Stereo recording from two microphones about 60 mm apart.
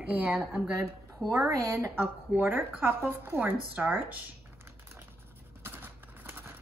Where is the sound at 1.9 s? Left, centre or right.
Right.